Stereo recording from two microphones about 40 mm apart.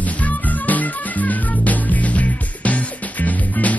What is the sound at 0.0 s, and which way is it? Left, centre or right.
Music, left.